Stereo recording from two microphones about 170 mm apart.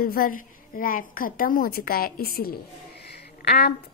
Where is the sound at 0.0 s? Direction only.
60° left (ahead or behind).